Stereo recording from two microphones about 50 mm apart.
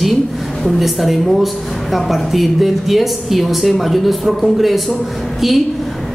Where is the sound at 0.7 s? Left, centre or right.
Centre.